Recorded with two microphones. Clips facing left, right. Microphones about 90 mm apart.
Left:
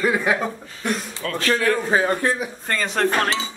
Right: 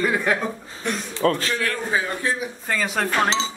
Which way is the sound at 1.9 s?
50° left (ahead or behind).